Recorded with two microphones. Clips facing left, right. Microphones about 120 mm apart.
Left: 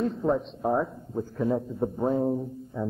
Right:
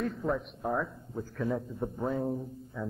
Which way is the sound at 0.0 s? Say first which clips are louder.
Left 6 dB; 25° left (ahead or behind).